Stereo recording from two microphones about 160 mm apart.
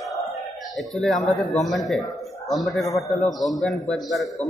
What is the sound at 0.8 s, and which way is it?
A man's voice, centre (ahead or behind).